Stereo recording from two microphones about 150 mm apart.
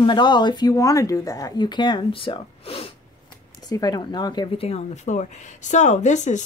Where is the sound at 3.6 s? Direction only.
25° left (ahead or behind).